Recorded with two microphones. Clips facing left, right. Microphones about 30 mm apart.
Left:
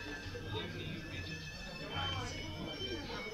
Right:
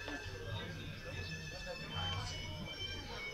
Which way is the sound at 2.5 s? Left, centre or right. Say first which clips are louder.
Left 3 dB; centre.